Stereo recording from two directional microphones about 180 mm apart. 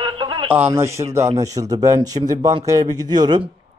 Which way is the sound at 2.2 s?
35° right (ahead or behind).